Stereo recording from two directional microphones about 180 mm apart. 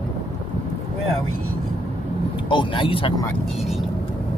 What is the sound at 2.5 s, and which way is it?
Vehicle, 30° left (ahead or behind).